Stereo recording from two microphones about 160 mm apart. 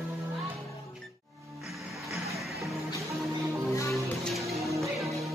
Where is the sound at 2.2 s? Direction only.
Centre (ahead or behind).